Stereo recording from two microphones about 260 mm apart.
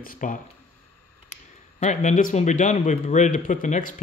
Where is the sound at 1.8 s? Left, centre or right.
Left.